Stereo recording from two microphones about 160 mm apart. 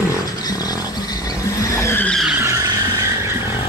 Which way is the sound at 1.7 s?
15° left (ahead or behind).